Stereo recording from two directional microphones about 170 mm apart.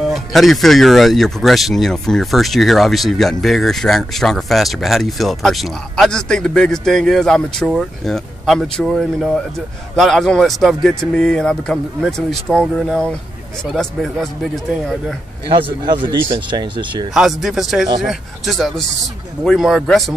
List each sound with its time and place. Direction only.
0.1 s speech: centre (ahead or behind)
15.4 s speech: 30° right (ahead or behind)
17.1 s speech: centre (ahead or behind)